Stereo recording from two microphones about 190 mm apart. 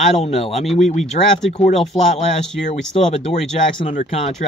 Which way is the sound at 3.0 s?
35° left (ahead or behind).